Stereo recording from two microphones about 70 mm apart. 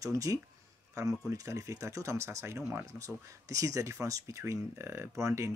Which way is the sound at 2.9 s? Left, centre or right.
Right.